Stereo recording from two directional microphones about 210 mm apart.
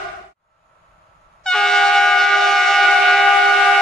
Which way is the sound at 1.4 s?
5° left (ahead or behind).